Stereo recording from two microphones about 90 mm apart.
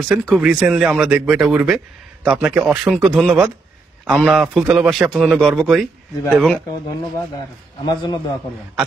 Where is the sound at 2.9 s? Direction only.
Centre (ahead or behind).